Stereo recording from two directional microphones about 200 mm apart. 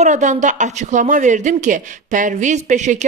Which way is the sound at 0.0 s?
35° right (ahead or behind).